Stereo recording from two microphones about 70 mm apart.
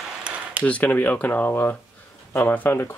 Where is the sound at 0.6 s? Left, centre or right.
Left.